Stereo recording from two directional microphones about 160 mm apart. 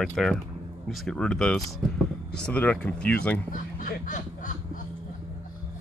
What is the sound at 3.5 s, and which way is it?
Speech, 55° left (ahead or behind).